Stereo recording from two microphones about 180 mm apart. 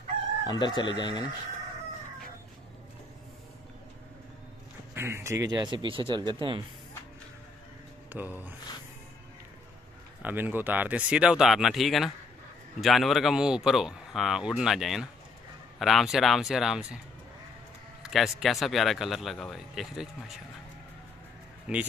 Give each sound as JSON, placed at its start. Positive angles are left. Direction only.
{"t": 0.5, "sound": "chicken", "side_deg": 25}
{"t": 4.9, "sound": "speech", "side_deg": -15}
{"t": 8.1, "sound": "speech", "side_deg": -10}
{"t": 10.2, "sound": "speech", "side_deg": -10}
{"t": 18.0, "sound": "speech", "side_deg": 0}
{"t": 21.7, "sound": "speech", "side_deg": -5}